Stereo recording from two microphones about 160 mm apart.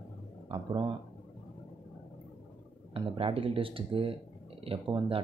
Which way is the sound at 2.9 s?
35° right (ahead or behind).